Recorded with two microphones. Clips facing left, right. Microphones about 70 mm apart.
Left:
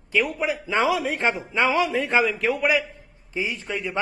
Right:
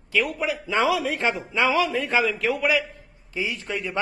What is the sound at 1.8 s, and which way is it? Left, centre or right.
Speech, centre.